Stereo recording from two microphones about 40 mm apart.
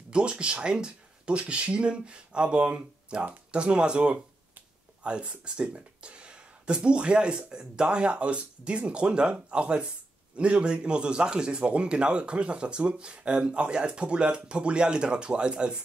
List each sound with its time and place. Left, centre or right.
0.1 s speech: right